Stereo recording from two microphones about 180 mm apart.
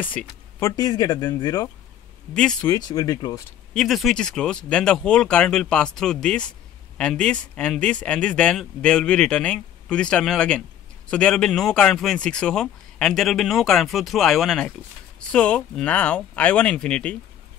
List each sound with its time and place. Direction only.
0.0 s speech: 10° left (ahead or behind)
2.3 s speech: 5° left (ahead or behind)
2.6 s speech: 25° left (ahead or behind)
3.7 s speech: centre (ahead or behind)